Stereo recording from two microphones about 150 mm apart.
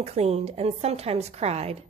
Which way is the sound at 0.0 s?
45° right (ahead or behind).